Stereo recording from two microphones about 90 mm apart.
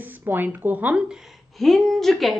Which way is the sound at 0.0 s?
20° right (ahead or behind).